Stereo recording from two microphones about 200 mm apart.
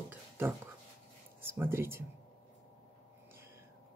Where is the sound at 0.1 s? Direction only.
10° right (ahead or behind).